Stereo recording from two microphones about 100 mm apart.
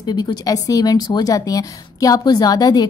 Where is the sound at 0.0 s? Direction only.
45° left (ahead or behind).